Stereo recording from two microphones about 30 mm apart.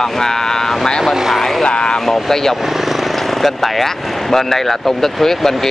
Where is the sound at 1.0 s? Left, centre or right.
Centre.